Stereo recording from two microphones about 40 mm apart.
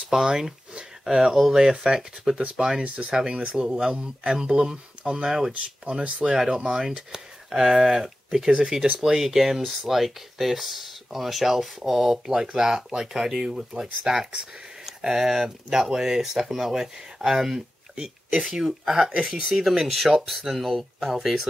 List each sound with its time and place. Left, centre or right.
0.1 s speech: centre
2.8 s speech: right; by 8.5 s centre
8.5 s speech: centre
19.6 s speech: centre